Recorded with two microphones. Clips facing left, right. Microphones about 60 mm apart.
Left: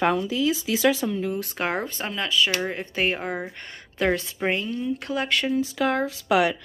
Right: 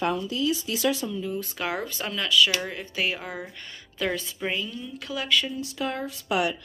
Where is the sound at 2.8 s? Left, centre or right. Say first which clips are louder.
Left 4 dB; left.